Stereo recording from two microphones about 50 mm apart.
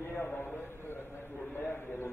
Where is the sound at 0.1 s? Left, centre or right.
Left.